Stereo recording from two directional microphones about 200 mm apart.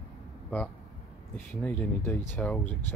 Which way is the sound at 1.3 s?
5° left (ahead or behind).